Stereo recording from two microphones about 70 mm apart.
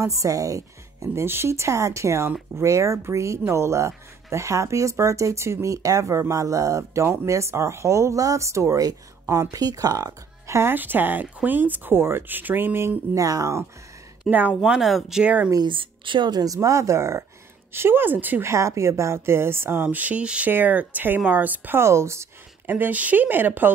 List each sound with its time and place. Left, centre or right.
0.0 s speech: right
1.1 s speech: right
10.4 s speech: right
10.7 s speech: right
13.1 s speech: right
14.6 s speech: centre
15.2 s speech: centre
16.2 s speech: right
16.5 s speech: right
18.4 s a woman's voice: right
21.8 s speech: right
22.7 s speech: right